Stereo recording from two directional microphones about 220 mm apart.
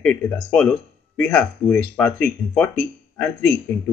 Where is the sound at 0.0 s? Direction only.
5° left (ahead or behind).